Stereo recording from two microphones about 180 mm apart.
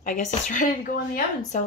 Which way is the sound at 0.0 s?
45° left (ahead or behind).